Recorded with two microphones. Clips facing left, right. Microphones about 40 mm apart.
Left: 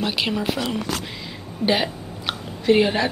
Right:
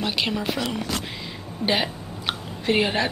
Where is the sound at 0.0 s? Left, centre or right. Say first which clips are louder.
Left 2 dB; centre.